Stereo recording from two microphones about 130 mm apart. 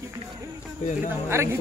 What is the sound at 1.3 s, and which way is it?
Speech, 20° right (ahead or behind).